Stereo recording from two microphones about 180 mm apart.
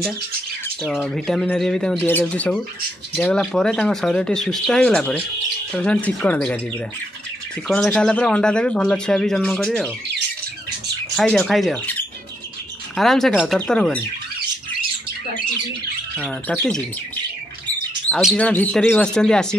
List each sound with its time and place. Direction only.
0.8 s speech: 5° left (ahead or behind)
7.6 s speech: 5° left (ahead or behind)
11.1 s speech: centre (ahead or behind)
16.3 s speech: 10° left (ahead or behind)
18.2 s speech: 5° left (ahead or behind)